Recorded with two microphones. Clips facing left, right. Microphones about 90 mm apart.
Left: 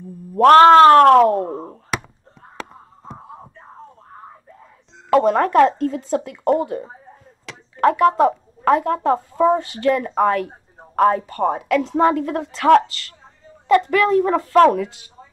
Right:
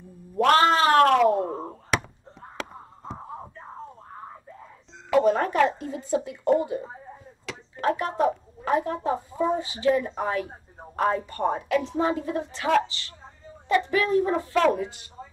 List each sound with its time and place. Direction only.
0.6 s a sound: 60° left (ahead or behind)
5.1 s a woman's voice: 70° left (ahead or behind)
7.8 s a woman's voice: 70° left (ahead or behind)
14.5 s speech: 60° left (ahead or behind)